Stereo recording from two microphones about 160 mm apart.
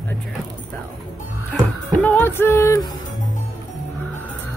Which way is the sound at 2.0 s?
10° left (ahead or behind).